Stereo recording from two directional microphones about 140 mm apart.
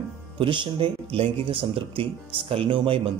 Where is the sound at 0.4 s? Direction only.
35° right (ahead or behind).